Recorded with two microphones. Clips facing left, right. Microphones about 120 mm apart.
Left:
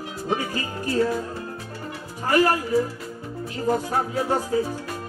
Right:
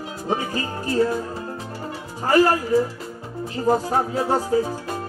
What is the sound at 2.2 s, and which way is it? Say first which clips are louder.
Music: right 3 dB; 30° right (ahead or behind).